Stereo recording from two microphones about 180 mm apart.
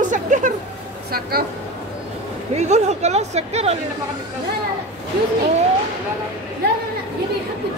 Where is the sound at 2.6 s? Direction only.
40° right (ahead or behind).